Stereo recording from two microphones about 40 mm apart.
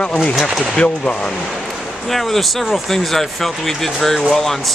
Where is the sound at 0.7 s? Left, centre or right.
Left.